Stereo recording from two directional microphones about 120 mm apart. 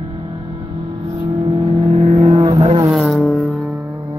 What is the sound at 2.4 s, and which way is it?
Vehicle, 45° right (ahead or behind).